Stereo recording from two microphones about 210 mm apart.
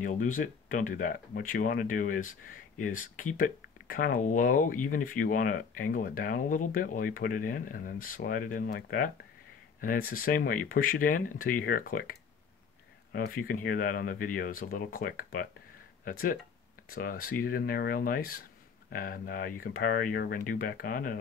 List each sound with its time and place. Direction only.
0.0 s speech: 40° left (ahead or behind)